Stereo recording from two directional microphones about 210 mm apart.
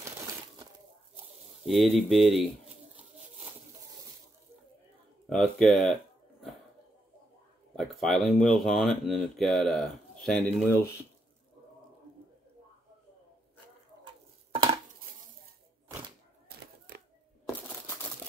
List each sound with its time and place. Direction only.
1.7 s speech: centre (ahead or behind)
5.2 s speech: centre (ahead or behind)
7.7 s speech: centre (ahead or behind)
14.5 s a sound: 25° right (ahead or behind)